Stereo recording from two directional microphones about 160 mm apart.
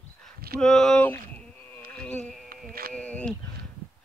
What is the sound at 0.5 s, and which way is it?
Speech, 5° left (ahead or behind).